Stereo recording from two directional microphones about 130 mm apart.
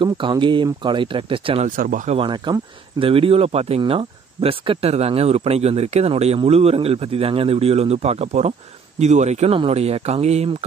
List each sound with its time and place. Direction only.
0.0 s speech: 40° right (ahead or behind)
1.8 s speech: 85° right
2.1 s speech: 35° right (ahead or behind); by 10.5 s 55° right (ahead or behind)